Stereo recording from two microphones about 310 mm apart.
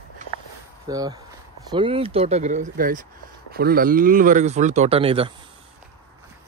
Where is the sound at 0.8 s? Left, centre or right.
Centre.